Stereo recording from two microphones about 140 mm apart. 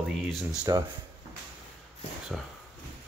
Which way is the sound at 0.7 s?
25° right (ahead or behind).